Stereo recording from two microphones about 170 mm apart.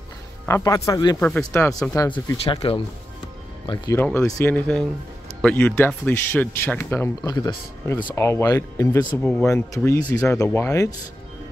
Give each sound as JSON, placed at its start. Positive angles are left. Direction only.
{"t": 0.5, "sound": "speech", "side_deg": 20}
{"t": 3.9, "sound": "speech", "side_deg": 10}